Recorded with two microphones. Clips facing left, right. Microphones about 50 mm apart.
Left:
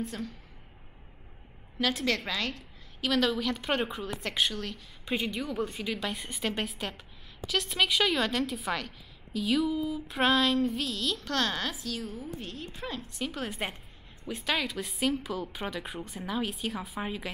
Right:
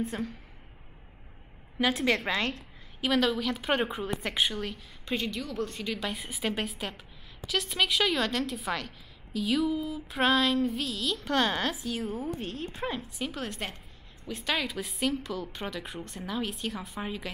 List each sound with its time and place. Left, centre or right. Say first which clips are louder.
1.8 s a woman's voice: right 3 dB; centre
2.2 s a woman's voice: right 3 dB; right
3.0 s a woman's voice: right 1 dB; centre
5.0 s a woman's voice: left 1 dB; centre
5.9 s a woman's voice: even; centre
11.2 s a woman's voice: right 5 dB; centre
12.1 s a woman's voice: right 6 dB; right
12.7 s a woman's voice: right 4 dB; centre
13.1 s a woman's voice: even; centre